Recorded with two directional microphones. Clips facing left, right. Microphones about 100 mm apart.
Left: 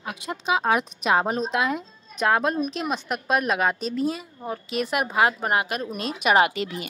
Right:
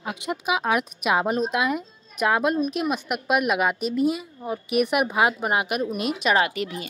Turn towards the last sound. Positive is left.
turn(degrees=25)  # may be behind; listen again after turning